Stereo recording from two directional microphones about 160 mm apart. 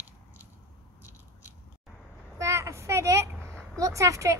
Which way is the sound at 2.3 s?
20° right (ahead or behind).